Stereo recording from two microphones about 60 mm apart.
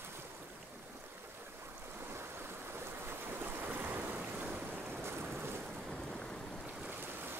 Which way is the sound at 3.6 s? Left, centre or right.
Right.